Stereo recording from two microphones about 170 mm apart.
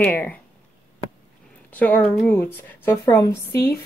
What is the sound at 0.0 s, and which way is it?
Speech, 10° left (ahead or behind).